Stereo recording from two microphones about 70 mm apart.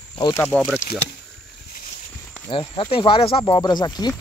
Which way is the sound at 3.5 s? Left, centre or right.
Left.